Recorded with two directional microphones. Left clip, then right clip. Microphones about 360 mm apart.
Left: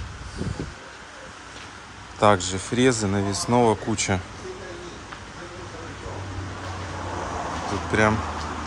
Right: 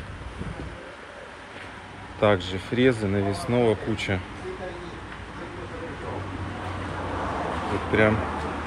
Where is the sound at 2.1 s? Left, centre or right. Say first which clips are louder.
Left 3 dB; centre.